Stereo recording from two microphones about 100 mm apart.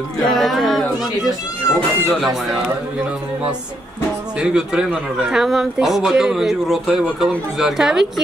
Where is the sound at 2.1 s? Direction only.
Centre (ahead or behind).